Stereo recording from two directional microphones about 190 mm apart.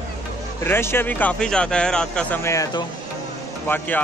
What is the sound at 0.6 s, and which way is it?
Speech, 15° left (ahead or behind).